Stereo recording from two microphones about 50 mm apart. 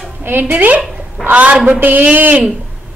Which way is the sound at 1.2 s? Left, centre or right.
Centre.